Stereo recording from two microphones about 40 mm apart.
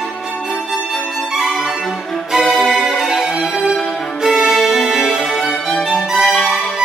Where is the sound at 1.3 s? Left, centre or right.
Centre.